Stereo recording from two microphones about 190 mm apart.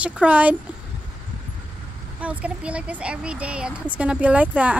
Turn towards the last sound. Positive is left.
turn(degrees=-5)  # may be behind; listen again after turning